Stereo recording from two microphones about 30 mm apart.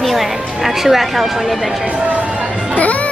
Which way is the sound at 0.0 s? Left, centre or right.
Centre.